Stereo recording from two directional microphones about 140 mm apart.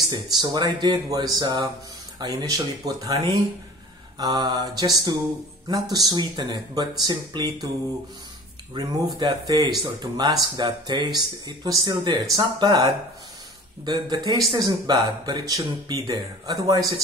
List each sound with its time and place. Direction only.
0.1 s speech: 30° right (ahead or behind)
4.2 s speech: 30° right (ahead or behind)
8.8 s speech: 30° right (ahead or behind)